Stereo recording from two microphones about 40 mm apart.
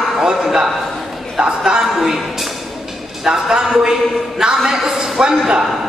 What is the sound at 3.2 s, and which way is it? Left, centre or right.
A man's voice, centre.